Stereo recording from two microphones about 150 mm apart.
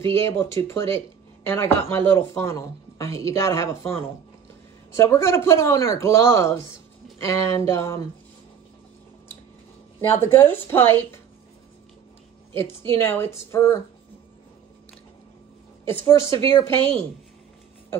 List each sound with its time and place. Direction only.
0.0 s speech: 15° left (ahead or behind)
4.9 s speech: 20° left (ahead or behind)
10.1 s speech: 15° left (ahead or behind)
12.5 s speech: 15° left (ahead or behind)
15.8 s speech: 15° left (ahead or behind)